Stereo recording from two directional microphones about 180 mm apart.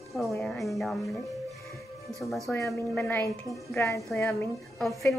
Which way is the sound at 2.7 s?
Centre (ahead or behind).